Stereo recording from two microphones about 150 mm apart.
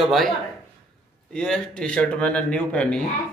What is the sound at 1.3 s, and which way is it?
A man's voice, 5° left (ahead or behind).